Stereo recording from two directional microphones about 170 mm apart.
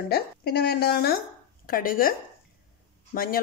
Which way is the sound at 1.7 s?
55° left (ahead or behind).